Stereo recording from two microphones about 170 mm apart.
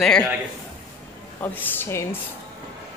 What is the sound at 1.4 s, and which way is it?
Speech, 10° left (ahead or behind).